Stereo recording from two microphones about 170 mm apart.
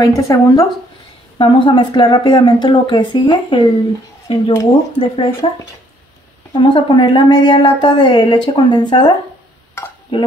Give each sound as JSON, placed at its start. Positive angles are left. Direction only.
{"t": 0.0, "sound": "a woman's voice", "side_deg": 20}
{"t": 1.4, "sound": "a woman's voice", "side_deg": 30}
{"t": 6.6, "sound": "a woman's voice", "side_deg": 25}